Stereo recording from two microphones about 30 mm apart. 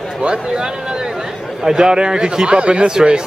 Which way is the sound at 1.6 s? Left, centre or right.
Right.